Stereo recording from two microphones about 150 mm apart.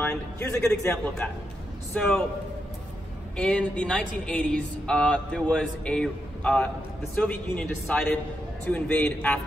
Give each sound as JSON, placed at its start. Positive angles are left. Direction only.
{"t": 0.0, "sound": "a man's voice", "side_deg": 20}
{"t": 1.2, "sound": "a man's voice", "side_deg": 10}
{"t": 3.3, "sound": "a man's voice", "side_deg": 5}